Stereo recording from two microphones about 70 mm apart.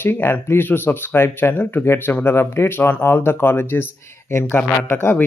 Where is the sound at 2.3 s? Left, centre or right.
Left.